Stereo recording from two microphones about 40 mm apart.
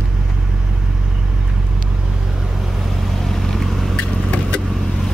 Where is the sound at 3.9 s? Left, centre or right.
Left.